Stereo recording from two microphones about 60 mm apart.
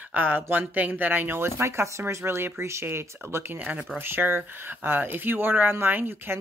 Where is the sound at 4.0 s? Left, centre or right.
Right.